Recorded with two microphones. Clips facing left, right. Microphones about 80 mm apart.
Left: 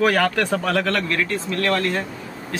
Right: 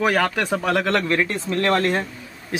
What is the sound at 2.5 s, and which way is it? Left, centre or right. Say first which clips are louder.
Speech: right 3 dB; centre.